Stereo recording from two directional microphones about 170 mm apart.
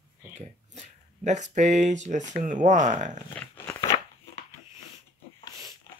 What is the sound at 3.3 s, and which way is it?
Dog, 15° left (ahead or behind).